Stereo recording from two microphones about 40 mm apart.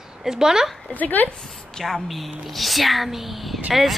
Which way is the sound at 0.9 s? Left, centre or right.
Left.